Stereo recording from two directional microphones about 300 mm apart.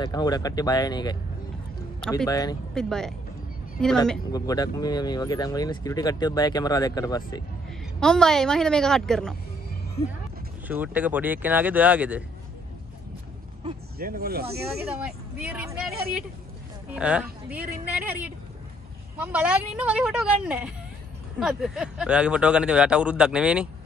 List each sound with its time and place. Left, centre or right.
0.0 s speech: centre
2.0 s speech: centre
2.2 s speech: centre
2.7 s speech: centre
8.0 s speech: centre
10.7 s speech: centre
13.9 s speech: right
14.9 s speech: centre